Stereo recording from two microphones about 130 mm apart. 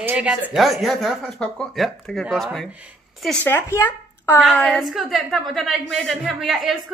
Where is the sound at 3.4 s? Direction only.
15° left (ahead or behind).